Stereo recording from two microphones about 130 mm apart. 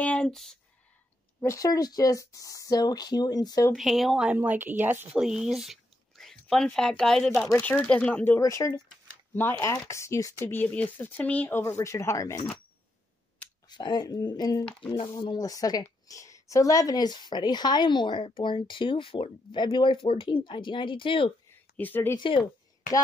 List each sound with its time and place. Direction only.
0.0 s speech: 10° left (ahead or behind)
1.4 s speech: 25° left (ahead or behind)
3.7 s speech: centre (ahead or behind)
4.4 s speech: 15° right (ahead or behind)
5.2 s speech: 5° right (ahead or behind); by 8.4 s 10° left (ahead or behind)
8.4 s speech: 25° left (ahead or behind)
13.7 s a woman's voice: 35° left (ahead or behind)
21.7 s speech: 15° left (ahead or behind)
22.1 s a woman's voice: 40° left (ahead or behind)